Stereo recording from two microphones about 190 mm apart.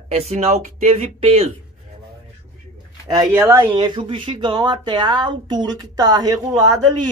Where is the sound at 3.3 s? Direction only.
10° right (ahead or behind).